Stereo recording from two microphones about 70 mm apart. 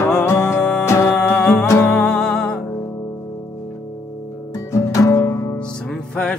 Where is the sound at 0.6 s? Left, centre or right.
Centre.